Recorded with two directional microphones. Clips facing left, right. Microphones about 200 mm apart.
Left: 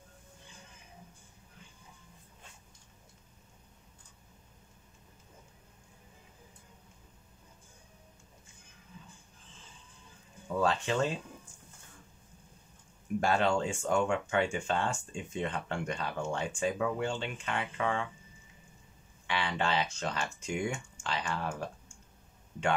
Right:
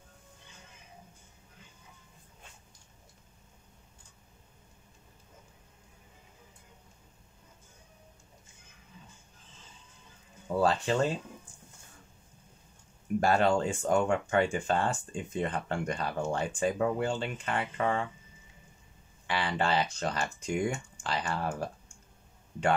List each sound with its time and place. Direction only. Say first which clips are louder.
10.5 s speech: right 3 dB; 35° right (ahead or behind)
13.2 s speech: right 3 dB; 40° right (ahead or behind)
19.2 s speech: right 2 dB; 40° right (ahead or behind)